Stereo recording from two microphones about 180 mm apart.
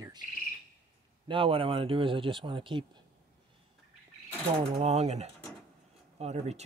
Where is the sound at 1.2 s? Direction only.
30° right (ahead or behind).